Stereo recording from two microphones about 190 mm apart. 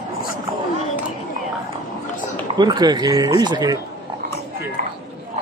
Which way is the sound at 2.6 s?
20° right (ahead or behind).